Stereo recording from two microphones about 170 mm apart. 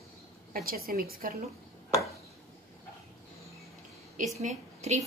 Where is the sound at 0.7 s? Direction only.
60° right (ahead or behind).